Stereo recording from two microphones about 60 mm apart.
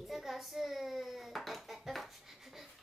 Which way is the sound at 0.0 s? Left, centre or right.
Centre.